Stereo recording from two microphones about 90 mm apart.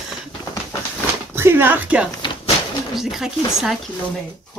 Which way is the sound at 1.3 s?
25° right (ahead or behind).